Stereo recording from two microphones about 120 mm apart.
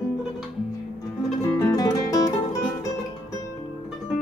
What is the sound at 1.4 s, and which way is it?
Music, 30° left (ahead or behind).